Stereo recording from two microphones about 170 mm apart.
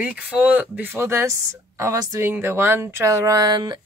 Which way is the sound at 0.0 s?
10° right (ahead or behind).